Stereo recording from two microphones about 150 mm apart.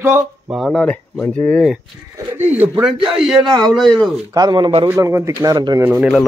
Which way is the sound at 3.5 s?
30° right (ahead or behind).